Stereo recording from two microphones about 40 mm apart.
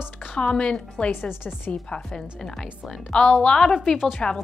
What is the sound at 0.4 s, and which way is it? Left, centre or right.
A woman's voice, left.